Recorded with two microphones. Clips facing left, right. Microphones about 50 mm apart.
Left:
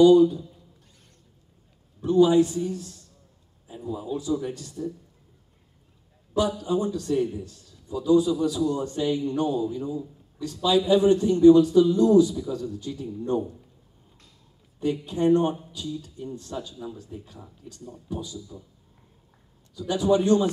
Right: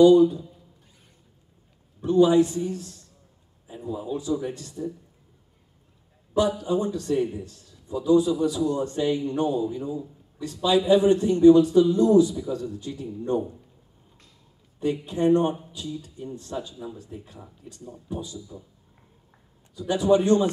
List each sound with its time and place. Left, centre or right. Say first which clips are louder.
0.0 s a man's voice: even; right
2.0 s a man's voice: even; right
3.6 s a man's voice: right 1 dB; right
6.3 s a man's voice: right 1 dB; right
7.2 s a man's voice: even; right
14.8 s a man's voice: even; right
19.7 s a man's voice: right 2 dB; right